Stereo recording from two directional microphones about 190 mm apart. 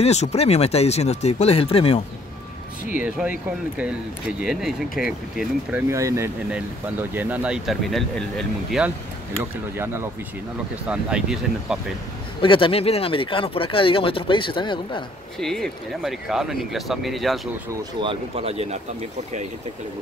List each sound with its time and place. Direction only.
0.0 s speech: 35° left (ahead or behind)
3.0 s speech: 5° right (ahead or behind)
5.9 s speech: 15° right (ahead or behind)
9.4 s speech: 10° right (ahead or behind)
12.4 s speech: 25° left (ahead or behind)
15.3 s speech: centre (ahead or behind)
18.0 s speech: 30° right (ahead or behind)